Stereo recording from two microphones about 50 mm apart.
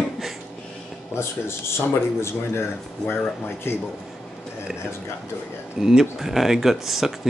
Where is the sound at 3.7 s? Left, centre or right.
Left.